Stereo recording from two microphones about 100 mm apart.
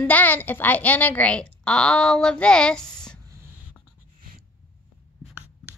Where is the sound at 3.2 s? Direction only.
30° right (ahead or behind).